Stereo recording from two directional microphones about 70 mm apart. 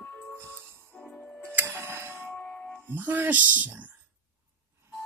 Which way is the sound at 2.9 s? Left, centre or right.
Right.